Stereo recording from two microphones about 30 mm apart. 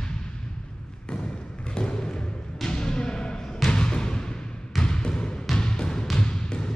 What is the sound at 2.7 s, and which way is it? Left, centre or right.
Music, left.